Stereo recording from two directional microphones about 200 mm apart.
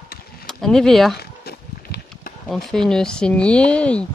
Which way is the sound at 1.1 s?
50° left (ahead or behind).